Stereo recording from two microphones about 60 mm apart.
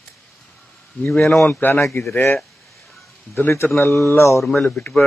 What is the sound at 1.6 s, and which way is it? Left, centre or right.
Speech, left.